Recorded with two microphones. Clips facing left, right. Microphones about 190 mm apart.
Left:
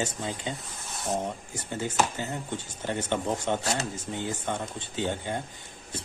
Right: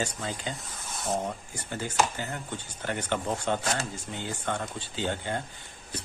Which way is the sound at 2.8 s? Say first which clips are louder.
Left 1 dB; 25° left (ahead or behind).